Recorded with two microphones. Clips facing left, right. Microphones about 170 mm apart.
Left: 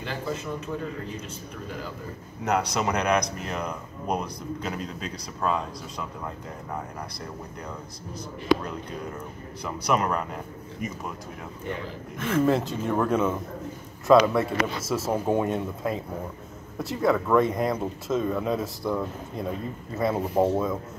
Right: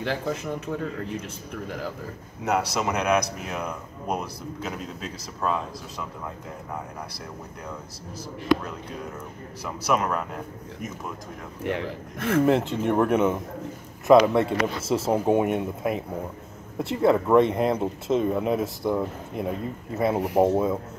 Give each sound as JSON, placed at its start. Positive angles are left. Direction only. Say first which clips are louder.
{"t": 0.0, "sound": "a man's voice", "louder": "right 4 dB", "side_deg": -80}
{"t": 2.4, "sound": "speech", "louder": "even", "side_deg": -5}
{"t": 9.6, "sound": "a man's voice", "louder": "even", "side_deg": -5}
{"t": 11.6, "sound": "a man's voice", "louder": "right 6 dB", "side_deg": -85}
{"t": 12.4, "sound": "speech", "louder": "right 2 dB", "side_deg": -20}